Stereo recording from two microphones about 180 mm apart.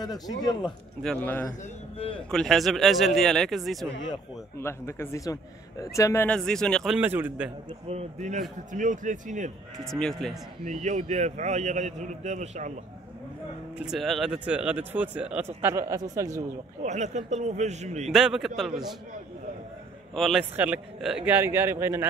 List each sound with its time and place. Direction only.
0.0 s speech: 20° left (ahead or behind)
1.0 s a man's voice: 5° left (ahead or behind)
1.6 s a man's voice: 35° left (ahead or behind)
2.3 s speech: centre (ahead or behind)
4.6 s a man's voice: 15° left (ahead or behind); by 7.5 s 10° right (ahead or behind)
7.9 s a man's voice: 40° right (ahead or behind)
9.8 s speech: 5° left (ahead or behind)
10.6 s a man's voice: 40° right (ahead or behind)
13.7 s speech: centre (ahead or behind); by 16.4 s 15° right (ahead or behind)
16.8 s a man's voice: 40° right (ahead or behind)
18.1 s speech: centre (ahead or behind)
20.2 s speech: centre (ahead or behind)